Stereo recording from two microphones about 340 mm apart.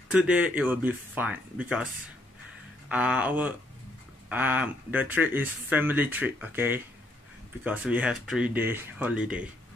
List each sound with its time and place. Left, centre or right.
0.1 s speech: centre
2.9 s speech: centre